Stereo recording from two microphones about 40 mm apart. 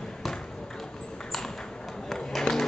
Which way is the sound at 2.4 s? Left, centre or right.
Centre.